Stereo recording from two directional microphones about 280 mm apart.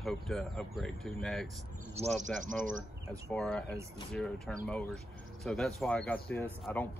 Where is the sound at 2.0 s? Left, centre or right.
Right.